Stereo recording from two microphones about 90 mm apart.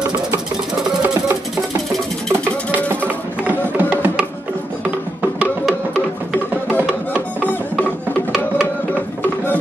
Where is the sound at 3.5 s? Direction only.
20° right (ahead or behind).